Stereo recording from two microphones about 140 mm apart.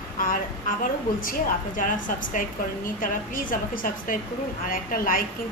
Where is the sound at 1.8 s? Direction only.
70° left (ahead or behind).